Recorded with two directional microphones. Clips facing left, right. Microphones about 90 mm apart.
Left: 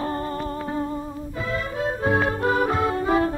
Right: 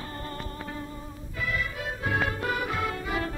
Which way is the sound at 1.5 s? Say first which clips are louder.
Left 7 dB; 30° left (ahead or behind).